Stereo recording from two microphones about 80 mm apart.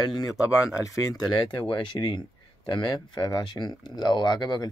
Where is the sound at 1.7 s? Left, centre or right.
Left.